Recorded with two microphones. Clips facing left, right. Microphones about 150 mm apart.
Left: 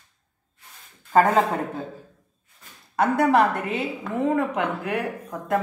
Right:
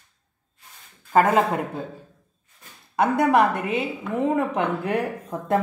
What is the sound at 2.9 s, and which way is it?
A woman's voice, 20° right (ahead or behind).